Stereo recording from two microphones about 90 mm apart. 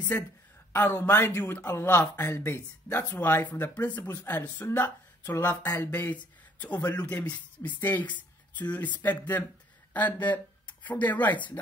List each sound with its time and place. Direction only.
0.1 s speech: 20° left (ahead or behind)
10.9 s speech: 20° left (ahead or behind)